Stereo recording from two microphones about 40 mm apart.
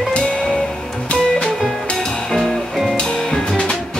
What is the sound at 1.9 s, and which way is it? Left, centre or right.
Music, centre.